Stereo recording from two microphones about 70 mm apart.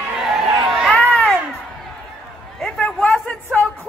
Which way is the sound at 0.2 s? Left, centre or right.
Centre.